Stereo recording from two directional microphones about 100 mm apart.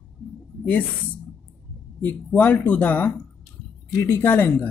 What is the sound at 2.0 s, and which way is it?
Speech, 15° left (ahead or behind).